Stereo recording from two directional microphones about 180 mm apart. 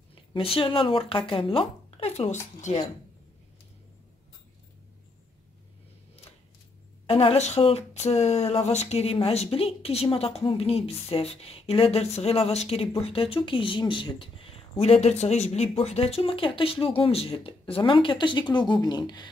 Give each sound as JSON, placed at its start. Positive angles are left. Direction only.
{"t": 0.1, "sound": "speech", "side_deg": 30}
{"t": 7.1, "sound": "speech", "side_deg": 35}